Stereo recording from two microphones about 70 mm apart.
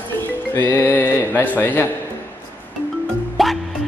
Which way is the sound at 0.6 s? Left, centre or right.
Left.